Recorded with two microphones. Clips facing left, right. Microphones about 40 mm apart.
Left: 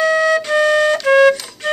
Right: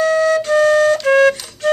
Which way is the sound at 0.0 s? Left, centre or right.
Left.